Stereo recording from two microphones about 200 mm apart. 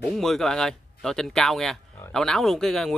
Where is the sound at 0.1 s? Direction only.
Centre (ahead or behind).